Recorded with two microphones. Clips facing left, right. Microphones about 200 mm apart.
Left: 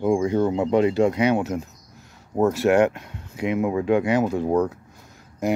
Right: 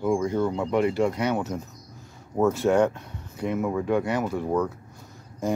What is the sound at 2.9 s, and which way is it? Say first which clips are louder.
Speech: left 2 dB; 90° left.